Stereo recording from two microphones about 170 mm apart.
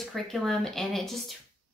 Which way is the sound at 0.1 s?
Centre (ahead or behind).